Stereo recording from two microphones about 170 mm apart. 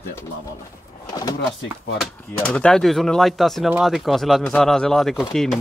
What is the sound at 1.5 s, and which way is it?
Speech, 5° left (ahead or behind).